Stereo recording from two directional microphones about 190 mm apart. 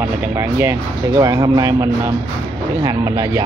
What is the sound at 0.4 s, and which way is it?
Speech, 15° right (ahead or behind).